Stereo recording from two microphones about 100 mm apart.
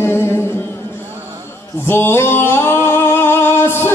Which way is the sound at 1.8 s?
25° left (ahead or behind).